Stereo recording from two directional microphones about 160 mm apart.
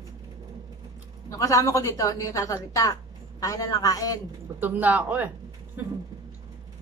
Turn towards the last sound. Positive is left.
turn(degrees=-15)  # may be behind; listen again after turning